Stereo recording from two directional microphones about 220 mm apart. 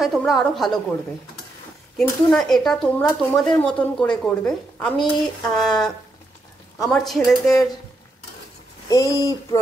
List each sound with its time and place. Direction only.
0.0 s speech: centre (ahead or behind)
2.0 s speech: centre (ahead or behind)
8.8 s speech: 15° left (ahead or behind)